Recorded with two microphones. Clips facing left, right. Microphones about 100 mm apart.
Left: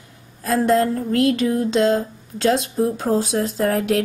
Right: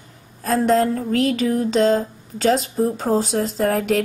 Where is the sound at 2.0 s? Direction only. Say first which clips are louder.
Even; centre (ahead or behind).